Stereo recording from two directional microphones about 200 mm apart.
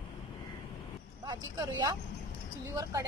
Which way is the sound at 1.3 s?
20° right (ahead or behind).